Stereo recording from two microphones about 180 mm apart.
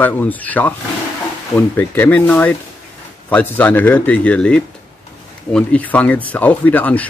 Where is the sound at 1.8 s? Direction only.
10° left (ahead or behind).